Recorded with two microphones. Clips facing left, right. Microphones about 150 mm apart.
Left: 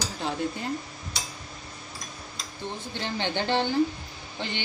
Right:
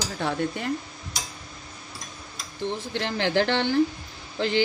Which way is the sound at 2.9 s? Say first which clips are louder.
Right 6 dB; 90° right.